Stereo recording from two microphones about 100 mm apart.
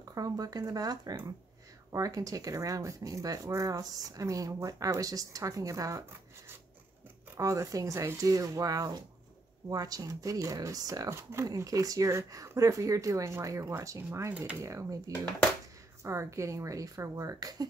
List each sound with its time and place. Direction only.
0.1 s speech: 35° right (ahead or behind)
7.3 s speech: 30° right (ahead or behind)
14.3 s speech: 15° right (ahead or behind)
14.6 s speech: 30° right (ahead or behind)